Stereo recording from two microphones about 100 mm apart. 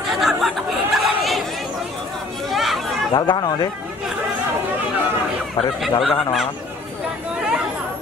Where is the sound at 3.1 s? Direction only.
45° left (ahead or behind).